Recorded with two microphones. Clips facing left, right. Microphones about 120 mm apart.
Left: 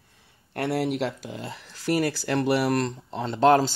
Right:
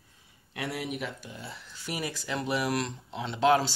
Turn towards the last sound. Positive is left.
turn(degrees=45)  # may be behind; listen again after turning